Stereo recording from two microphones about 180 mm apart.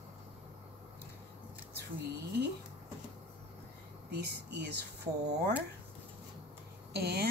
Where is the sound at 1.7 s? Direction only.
65° right (ahead or behind).